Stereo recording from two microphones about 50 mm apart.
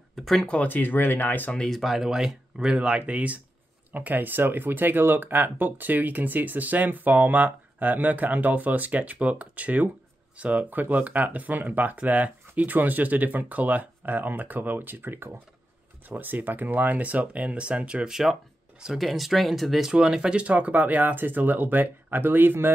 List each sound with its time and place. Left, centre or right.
0.1 s speech: centre
0.7 s speech: left
1.7 s speech: centre
2.0 s speech: centre
3.1 s speech: right
18.1 s speech: centre
19.9 s speech: centre
20.3 s speech: right